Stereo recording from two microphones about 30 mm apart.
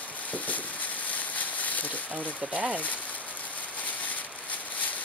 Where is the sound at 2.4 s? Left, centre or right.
Right.